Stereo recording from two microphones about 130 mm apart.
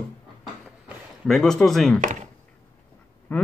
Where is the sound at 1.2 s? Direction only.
Centre (ahead or behind).